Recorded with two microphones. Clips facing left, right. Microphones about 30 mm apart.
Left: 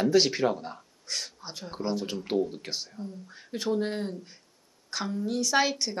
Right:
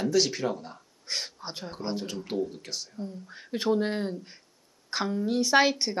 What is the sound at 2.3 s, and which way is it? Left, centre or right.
Speech, centre.